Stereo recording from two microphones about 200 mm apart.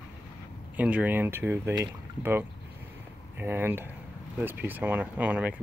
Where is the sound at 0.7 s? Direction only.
5° right (ahead or behind).